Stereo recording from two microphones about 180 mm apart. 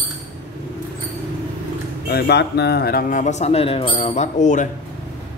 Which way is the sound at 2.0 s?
65° left (ahead or behind).